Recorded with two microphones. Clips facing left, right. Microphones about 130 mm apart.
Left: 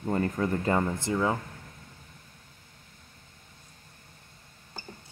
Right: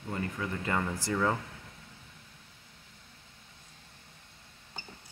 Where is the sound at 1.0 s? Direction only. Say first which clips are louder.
Left 2 dB; 15° left (ahead or behind).